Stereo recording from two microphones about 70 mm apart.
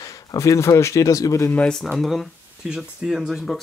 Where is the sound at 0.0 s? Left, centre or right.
Left.